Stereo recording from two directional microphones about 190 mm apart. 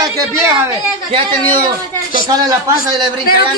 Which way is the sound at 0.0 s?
15° right (ahead or behind).